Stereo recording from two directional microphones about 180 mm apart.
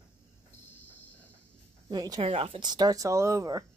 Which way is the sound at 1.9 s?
20° right (ahead or behind).